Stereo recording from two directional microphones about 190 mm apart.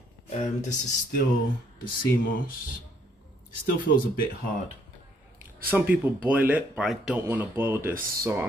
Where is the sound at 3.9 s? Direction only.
65° left (ahead or behind).